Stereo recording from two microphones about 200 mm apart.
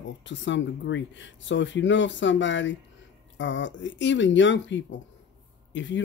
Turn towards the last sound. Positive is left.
turn(degrees=65)  # may be behind; listen again after turning